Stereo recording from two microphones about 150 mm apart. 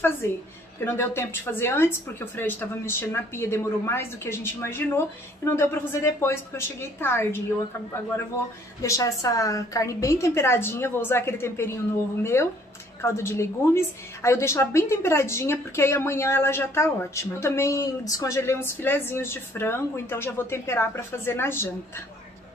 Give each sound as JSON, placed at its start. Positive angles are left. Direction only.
{"t": 0.2, "sound": "a woman's voice", "side_deg": 15}
{"t": 8.8, "sound": "a woman's voice", "side_deg": 20}